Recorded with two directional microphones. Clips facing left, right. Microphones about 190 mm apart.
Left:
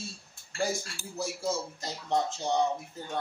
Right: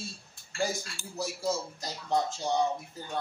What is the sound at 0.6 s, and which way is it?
A man's voice, centre (ahead or behind).